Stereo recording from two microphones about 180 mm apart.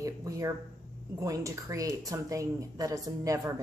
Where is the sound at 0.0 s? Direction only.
20° right (ahead or behind).